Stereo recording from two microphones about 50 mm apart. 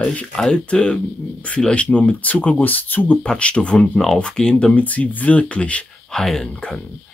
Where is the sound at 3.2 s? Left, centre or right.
Left.